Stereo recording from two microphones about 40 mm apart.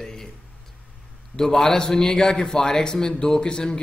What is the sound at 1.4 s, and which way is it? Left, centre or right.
A man's voice, centre.